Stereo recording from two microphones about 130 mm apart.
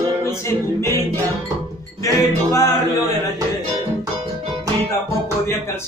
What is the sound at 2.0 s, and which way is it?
Music, 25° left (ahead or behind).